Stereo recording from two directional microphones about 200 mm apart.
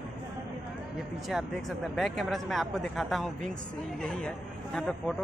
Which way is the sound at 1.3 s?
Centre (ahead or behind).